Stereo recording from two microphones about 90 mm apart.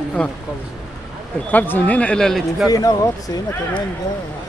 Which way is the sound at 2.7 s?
45° left (ahead or behind).